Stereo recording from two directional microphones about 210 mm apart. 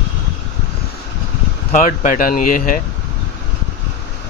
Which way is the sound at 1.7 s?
40° left (ahead or behind).